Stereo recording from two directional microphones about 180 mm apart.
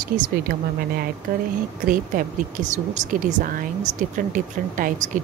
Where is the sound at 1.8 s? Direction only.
45° right (ahead or behind).